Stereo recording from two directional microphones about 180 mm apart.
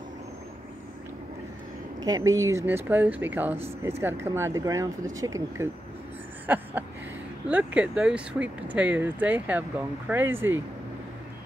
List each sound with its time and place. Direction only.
2.0 s speech: 20° right (ahead or behind)
6.4 s a sound: 10° right (ahead or behind)
7.4 s speech: 5° right (ahead or behind)